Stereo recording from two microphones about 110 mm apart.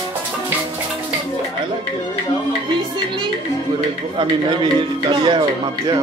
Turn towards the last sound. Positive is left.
turn(degrees=-45)  # may be behind; listen again after turning